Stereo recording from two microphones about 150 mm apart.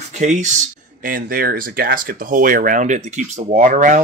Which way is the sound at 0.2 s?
55° right (ahead or behind).